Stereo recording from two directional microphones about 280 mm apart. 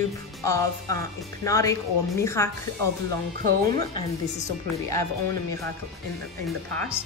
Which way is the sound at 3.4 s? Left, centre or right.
Right.